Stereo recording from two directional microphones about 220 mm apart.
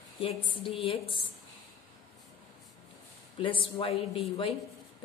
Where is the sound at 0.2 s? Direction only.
25° left (ahead or behind).